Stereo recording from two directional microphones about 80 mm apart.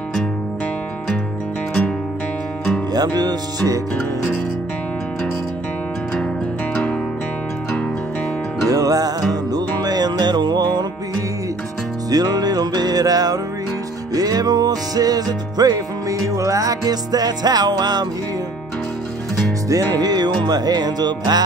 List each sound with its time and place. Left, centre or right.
2.9 s music: right
6.7 s music: centre
8.6 s music: right
12.1 s music: right
19.7 s music: right